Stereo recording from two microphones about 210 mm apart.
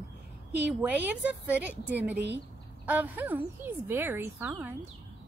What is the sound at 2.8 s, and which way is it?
A woman's voice, 10° right (ahead or behind).